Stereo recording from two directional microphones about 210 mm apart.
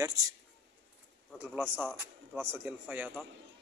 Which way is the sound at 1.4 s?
10° right (ahead or behind).